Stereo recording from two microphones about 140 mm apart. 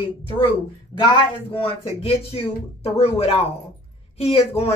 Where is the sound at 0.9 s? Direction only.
35° left (ahead or behind).